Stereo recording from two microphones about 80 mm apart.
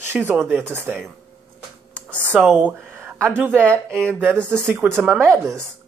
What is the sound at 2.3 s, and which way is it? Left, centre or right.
Speech, right.